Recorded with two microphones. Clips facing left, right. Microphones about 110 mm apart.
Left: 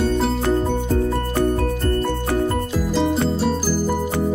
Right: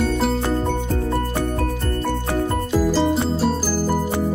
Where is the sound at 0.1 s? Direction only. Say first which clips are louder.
Left 1 dB; centre (ahead or behind).